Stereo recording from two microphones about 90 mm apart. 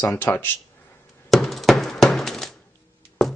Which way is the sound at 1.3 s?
Centre (ahead or behind).